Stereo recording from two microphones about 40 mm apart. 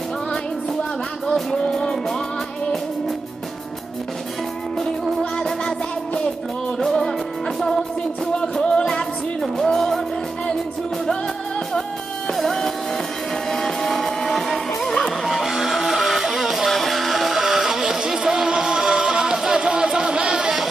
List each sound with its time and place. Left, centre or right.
1.2 s music: centre
6.8 s music: centre
9.4 s music: centre
12.3 s music: centre
19.6 s a sound: right